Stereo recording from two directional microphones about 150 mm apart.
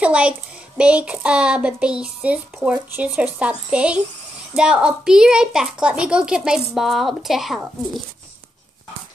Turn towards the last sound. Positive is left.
turn(degrees=0)  # may be behind; listen again after turning